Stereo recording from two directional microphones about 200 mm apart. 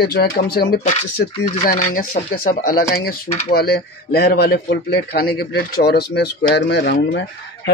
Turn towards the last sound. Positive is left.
turn(degrees=60)  # may be behind; listen again after turning